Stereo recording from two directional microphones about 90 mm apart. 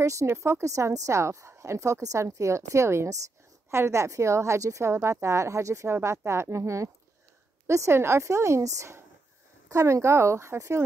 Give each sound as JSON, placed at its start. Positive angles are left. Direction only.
{"t": 0.0, "sound": "a woman's voice", "side_deg": -35}